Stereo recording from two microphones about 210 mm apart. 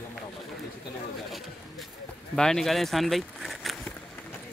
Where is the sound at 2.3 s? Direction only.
Centre (ahead or behind).